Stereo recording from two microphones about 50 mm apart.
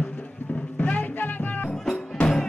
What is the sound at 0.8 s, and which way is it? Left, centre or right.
Music, left.